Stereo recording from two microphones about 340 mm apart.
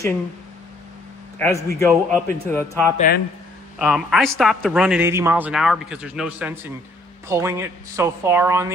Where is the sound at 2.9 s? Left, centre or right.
Left.